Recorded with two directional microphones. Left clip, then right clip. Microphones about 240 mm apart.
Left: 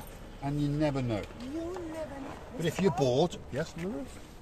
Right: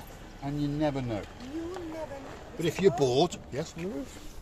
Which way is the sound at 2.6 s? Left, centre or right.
Centre.